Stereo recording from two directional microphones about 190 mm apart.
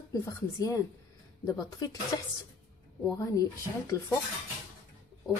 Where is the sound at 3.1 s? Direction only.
15° left (ahead or behind).